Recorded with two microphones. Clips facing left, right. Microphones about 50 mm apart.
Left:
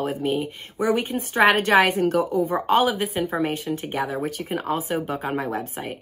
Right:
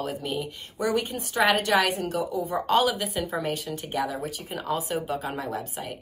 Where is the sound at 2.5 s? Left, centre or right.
Left.